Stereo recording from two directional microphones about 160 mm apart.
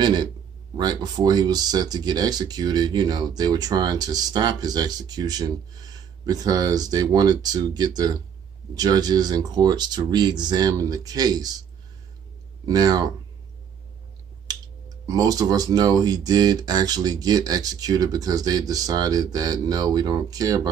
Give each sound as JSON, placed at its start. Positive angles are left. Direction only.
{"t": 0.0, "sound": "speech", "side_deg": -25}
{"t": 12.6, "sound": "speech", "side_deg": -25}
{"t": 14.5, "sound": "speech", "side_deg": -25}